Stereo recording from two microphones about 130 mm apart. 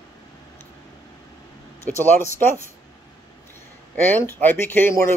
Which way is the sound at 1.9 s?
15° left (ahead or behind).